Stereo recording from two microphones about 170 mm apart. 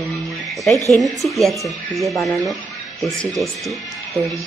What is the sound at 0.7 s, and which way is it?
Speech, 20° right (ahead or behind).